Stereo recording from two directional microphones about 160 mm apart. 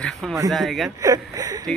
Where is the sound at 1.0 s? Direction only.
20° right (ahead or behind).